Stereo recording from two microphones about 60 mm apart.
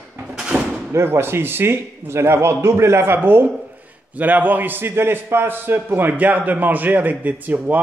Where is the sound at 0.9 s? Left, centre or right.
Right.